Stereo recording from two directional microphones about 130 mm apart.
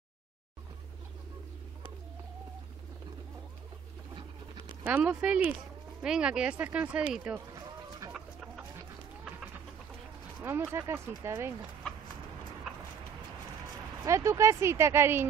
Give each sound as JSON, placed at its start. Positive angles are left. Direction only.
{"t": 4.8, "sound": "speech", "side_deg": -10}
{"t": 8.0, "sound": "chicken", "side_deg": -25}
{"t": 10.4, "sound": "speech", "side_deg": -20}
{"t": 14.0, "sound": "speech", "side_deg": -25}